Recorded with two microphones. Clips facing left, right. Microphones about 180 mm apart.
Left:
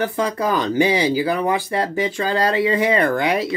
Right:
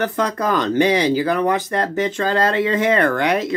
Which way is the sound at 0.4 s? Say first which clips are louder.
Right 1 dB; 10° left (ahead or behind).